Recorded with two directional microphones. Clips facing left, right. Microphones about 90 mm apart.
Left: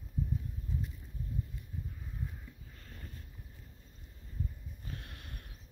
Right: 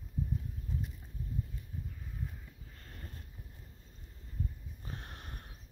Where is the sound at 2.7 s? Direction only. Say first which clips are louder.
Right 2 dB; 40° right (ahead or behind).